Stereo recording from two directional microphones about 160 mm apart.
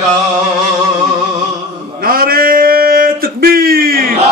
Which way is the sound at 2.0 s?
65° right (ahead or behind).